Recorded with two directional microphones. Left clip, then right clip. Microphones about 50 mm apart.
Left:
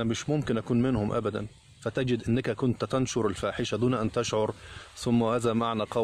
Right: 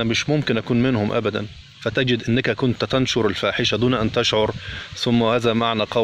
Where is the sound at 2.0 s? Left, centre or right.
Left.